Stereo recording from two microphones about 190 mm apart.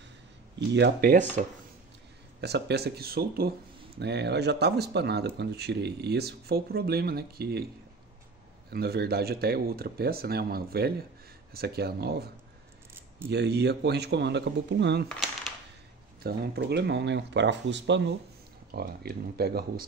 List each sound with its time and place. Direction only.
0.7 s speech: 65° right (ahead or behind)
2.4 s speech: 60° right (ahead or behind)
8.6 s speech: 55° right (ahead or behind)
13.3 s speech: 60° right (ahead or behind)
15.0 s a sound: centre (ahead or behind)
16.2 s speech: 55° right (ahead or behind)
18.7 s speech: 55° right (ahead or behind)